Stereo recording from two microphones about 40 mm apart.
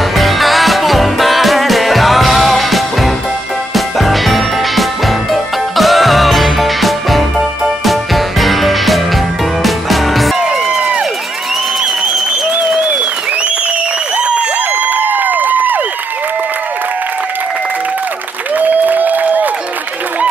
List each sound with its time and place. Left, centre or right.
0.1 s music: centre
12.5 s applause: right
14.7 s a sound: right
18.5 s applause: right